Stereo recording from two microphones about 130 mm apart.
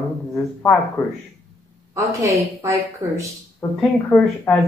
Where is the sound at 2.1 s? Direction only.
25° right (ahead or behind).